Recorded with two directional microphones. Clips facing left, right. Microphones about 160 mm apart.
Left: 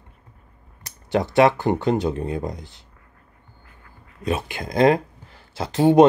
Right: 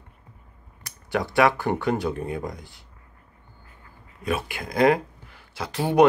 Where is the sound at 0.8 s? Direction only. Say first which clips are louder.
Left 4 dB; 25° left (ahead or behind).